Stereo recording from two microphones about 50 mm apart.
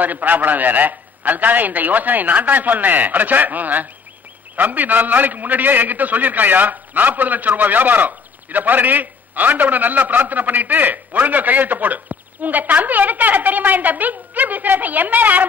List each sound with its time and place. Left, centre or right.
0.0 s a man's voice: right